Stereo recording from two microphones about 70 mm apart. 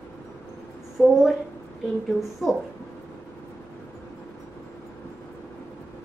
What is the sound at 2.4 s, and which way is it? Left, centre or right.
Speech, centre.